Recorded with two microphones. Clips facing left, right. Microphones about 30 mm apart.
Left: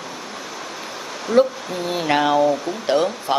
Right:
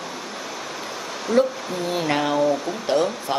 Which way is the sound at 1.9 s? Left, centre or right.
Centre.